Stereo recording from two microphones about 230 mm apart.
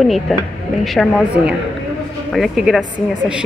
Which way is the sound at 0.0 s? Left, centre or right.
Centre.